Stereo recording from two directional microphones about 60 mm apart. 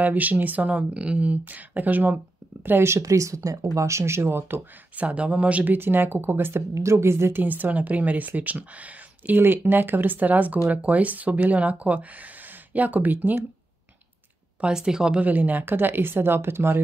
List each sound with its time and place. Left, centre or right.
0.0 s speech: right
2.6 s speech: right
3.0 s speech: right
4.9 s speech: right
6.7 s speech: right
7.4 s speech: right
14.6 s speech: centre
15.1 s speech: right